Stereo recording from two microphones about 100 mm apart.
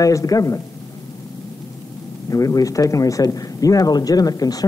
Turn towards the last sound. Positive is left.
turn(degrees=40)  # may be behind; listen again after turning